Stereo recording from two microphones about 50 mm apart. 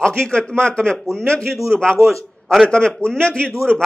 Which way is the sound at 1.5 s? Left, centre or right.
Centre.